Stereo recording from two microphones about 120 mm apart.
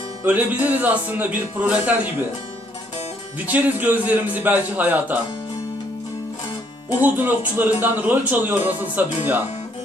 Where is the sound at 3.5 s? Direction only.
15° right (ahead or behind).